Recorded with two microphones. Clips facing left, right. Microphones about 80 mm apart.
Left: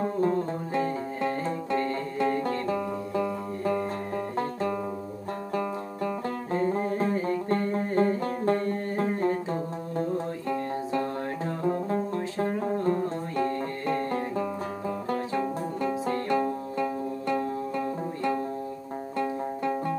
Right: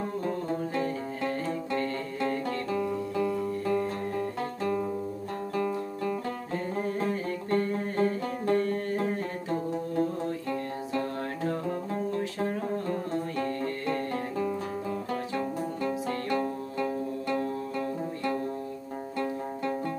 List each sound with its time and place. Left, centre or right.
0.7 s music: left
2.7 s music: left
6.8 s music: left
10.5 s music: left
13.4 s music: left